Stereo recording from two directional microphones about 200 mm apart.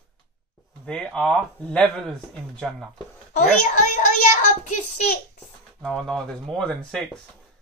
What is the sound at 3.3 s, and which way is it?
A child's voice, 35° left (ahead or behind).